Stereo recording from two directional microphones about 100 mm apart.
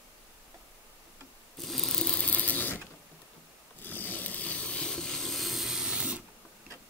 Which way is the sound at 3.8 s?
20° left (ahead or behind).